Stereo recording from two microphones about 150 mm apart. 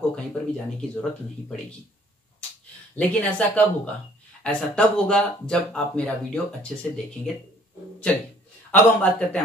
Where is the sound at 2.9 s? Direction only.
10° left (ahead or behind).